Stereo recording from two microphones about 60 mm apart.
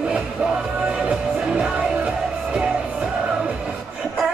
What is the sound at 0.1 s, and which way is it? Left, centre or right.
Music, right.